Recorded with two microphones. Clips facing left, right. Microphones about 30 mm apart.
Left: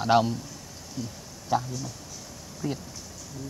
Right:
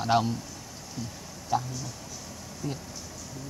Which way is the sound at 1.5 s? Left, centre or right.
Centre.